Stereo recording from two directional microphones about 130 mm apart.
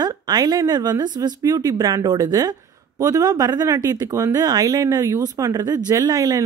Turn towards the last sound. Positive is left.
turn(degrees=-30)  # may be behind; listen again after turning